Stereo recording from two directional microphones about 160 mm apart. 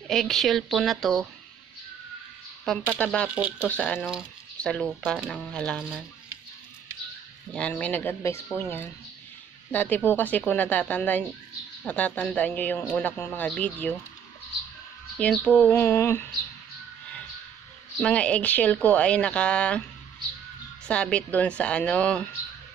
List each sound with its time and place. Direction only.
0.1 s speech: centre (ahead or behind)
2.7 s a man's voice: 5° left (ahead or behind)
3.3 s speech: 10° right (ahead or behind)
3.6 s a man's voice: 10° left (ahead or behind)
4.0 s speech: 5° right (ahead or behind)
7.5 s a man's voice: 10° left (ahead or behind)
15.1 s a man's voice: 5° left (ahead or behind)
18.0 s a man's voice: 5° left (ahead or behind)
20.8 s a man's voice: 5° left (ahead or behind)